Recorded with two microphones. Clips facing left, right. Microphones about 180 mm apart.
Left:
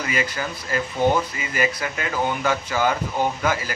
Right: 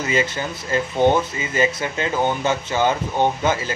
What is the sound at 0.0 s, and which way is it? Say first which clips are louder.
Speech: right 4 dB; 25° right (ahead or behind).